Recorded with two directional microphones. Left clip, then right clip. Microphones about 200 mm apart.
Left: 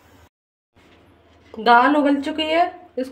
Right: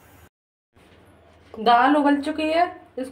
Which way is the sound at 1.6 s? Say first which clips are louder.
Left 2 dB; 25° left (ahead or behind).